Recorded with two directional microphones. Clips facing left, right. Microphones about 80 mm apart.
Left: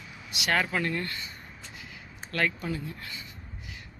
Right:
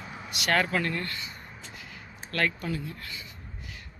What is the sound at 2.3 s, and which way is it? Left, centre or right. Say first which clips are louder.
Speech: even; centre.